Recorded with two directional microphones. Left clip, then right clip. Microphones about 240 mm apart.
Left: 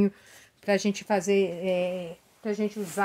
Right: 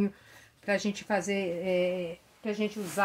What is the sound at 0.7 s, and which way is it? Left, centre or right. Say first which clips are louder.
Speech: left 4 dB; left.